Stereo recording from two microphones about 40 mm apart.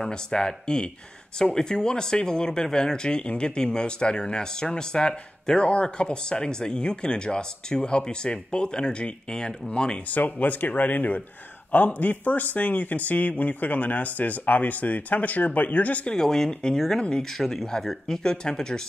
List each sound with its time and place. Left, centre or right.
0.1 s speech: centre
10.1 s a man's voice: left
16.2 s speech: centre